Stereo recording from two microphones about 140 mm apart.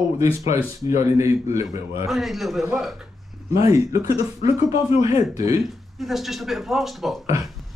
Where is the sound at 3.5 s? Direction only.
25° right (ahead or behind).